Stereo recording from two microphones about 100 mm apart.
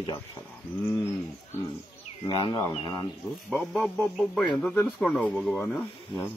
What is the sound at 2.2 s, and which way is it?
Speech, 50° left (ahead or behind).